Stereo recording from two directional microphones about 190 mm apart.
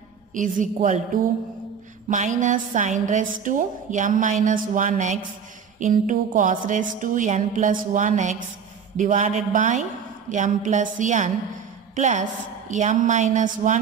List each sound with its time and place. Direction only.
0.3 s a woman's voice: 45° right (ahead or behind)